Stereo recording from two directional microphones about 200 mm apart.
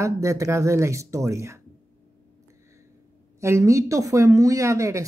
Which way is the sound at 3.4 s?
15° right (ahead or behind).